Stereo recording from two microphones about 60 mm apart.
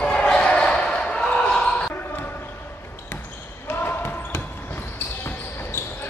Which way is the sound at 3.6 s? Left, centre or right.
Left.